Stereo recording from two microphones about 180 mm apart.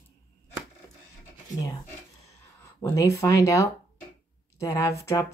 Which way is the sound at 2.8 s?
15° left (ahead or behind).